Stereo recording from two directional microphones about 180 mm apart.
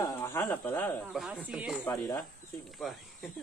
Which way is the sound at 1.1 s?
5° right (ahead or behind).